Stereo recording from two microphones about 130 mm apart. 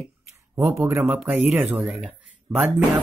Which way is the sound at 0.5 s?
20° right (ahead or behind).